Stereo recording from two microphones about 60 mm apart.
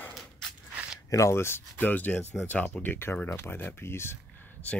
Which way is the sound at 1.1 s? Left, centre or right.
Left.